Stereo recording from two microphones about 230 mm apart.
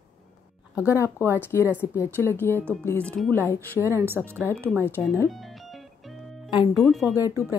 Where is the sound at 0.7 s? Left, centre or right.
Centre.